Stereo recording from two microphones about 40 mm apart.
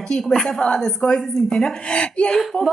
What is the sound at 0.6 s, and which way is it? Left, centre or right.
Speech, centre.